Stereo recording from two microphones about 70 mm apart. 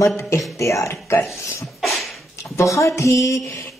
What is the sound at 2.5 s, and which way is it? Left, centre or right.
Speech, left.